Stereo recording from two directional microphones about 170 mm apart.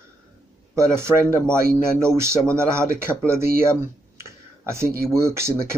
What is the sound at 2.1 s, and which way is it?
Speech, 15° right (ahead or behind).